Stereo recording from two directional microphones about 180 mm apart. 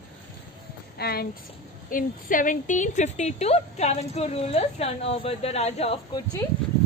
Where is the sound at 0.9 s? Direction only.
60° left (ahead or behind); by 5.9 s 35° left (ahead or behind).